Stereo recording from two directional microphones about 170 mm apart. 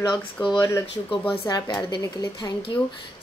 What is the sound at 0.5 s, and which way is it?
A woman's voice, 20° left (ahead or behind).